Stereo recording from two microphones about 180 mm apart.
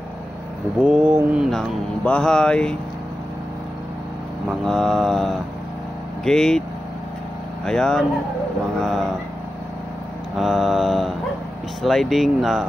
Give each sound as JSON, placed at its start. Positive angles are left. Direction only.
{"t": 0.8, "sound": "mantra", "side_deg": -10}
{"t": 4.5, "sound": "mantra", "side_deg": 0}
{"t": 7.6, "sound": "mantra", "side_deg": 5}
{"t": 10.3, "sound": "mantra", "side_deg": 0}